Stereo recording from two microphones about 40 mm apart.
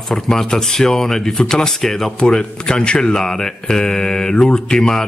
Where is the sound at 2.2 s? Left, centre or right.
Left.